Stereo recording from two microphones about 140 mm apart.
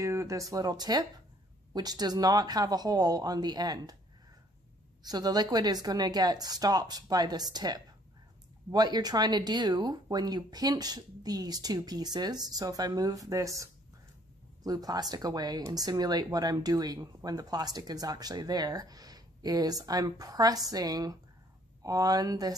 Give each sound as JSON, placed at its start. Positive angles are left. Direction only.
{"t": 0.0, "sound": "speech", "side_deg": -20}
{"t": 5.0, "sound": "speech", "side_deg": -30}